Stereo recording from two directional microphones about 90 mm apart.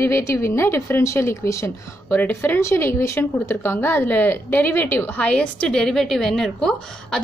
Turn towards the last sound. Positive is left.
turn(degrees=5)  # may be behind; listen again after turning